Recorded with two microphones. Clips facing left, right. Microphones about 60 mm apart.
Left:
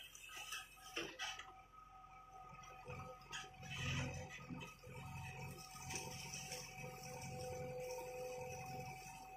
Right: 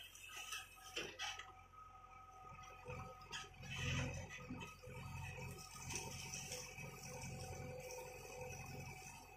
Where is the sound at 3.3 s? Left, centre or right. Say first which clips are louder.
Left 1 dB; centre.